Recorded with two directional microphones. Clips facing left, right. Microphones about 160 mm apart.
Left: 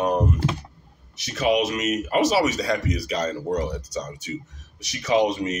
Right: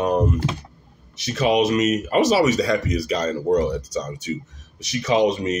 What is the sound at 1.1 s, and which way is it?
Speech, 25° right (ahead or behind).